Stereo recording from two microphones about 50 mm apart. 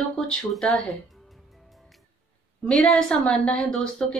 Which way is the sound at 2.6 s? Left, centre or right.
Centre.